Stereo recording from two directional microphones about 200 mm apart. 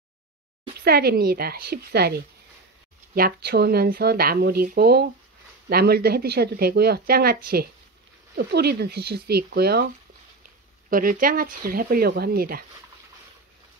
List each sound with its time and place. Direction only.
0.8 s speech: 50° right (ahead or behind)
10.9 s speech: 45° right (ahead or behind)